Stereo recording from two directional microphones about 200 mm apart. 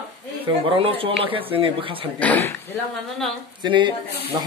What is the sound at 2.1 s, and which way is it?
Speech, 10° left (ahead or behind).